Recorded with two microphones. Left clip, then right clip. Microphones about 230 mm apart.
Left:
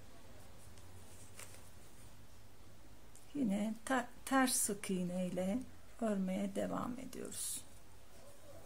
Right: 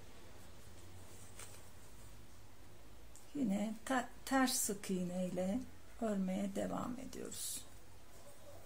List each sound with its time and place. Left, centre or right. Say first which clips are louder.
3.4 s speech: left 1 dB; centre